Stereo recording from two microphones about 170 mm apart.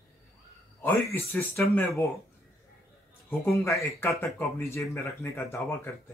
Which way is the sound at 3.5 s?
15° left (ahead or behind).